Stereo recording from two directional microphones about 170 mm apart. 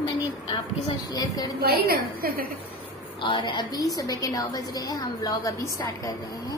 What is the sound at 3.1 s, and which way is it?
A woman's voice, 30° left (ahead or behind).